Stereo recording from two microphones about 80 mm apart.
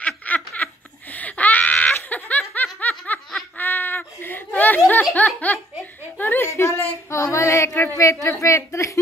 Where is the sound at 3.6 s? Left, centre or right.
Left.